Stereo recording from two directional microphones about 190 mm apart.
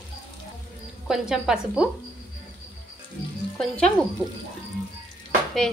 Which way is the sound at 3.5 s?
5° left (ahead or behind).